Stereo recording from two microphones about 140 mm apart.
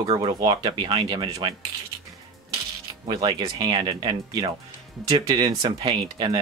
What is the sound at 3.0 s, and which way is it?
Speech, 30° right (ahead or behind).